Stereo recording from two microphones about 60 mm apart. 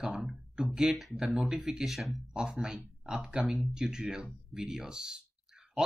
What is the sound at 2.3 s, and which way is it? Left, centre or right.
Speech, centre.